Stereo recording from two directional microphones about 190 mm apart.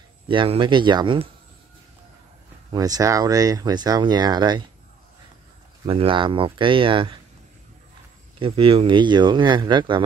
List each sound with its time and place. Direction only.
0.3 s speech: 25° right (ahead or behind)
2.7 s speech: 20° right (ahead or behind)
5.9 s speech: 30° right (ahead or behind)
8.4 s speech: 30° right (ahead or behind)